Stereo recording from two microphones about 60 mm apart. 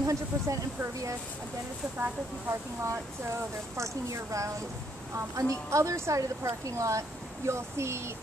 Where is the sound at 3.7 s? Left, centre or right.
Right.